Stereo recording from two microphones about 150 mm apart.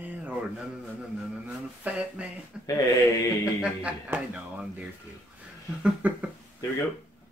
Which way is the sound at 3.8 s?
10° right (ahead or behind).